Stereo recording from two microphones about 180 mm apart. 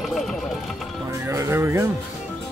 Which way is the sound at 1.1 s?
15° right (ahead or behind).